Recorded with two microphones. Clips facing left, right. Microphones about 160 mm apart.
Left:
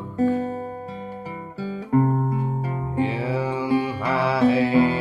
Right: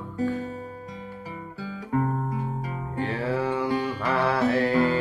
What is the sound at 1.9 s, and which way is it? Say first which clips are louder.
Guitar: left 6 dB; 30° left (ahead or behind).